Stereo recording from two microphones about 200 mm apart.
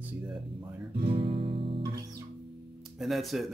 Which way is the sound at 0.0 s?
5° right (ahead or behind).